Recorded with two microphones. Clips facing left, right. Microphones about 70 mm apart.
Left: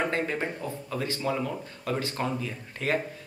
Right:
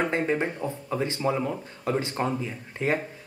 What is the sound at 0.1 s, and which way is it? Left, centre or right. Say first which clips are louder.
Speech: right 3 dB; right.